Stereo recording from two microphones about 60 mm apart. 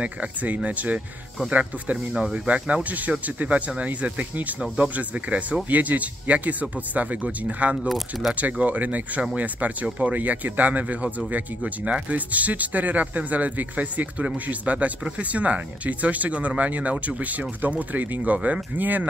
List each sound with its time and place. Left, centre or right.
0.0 s speech: right
7.9 s speech: centre
8.4 s speech: right